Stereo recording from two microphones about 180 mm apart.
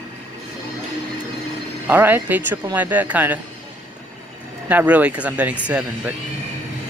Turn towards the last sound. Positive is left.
turn(degrees=-5)  # may be behind; listen again after turning